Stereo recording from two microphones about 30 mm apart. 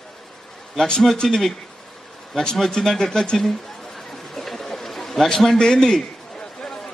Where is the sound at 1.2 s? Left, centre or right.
Centre.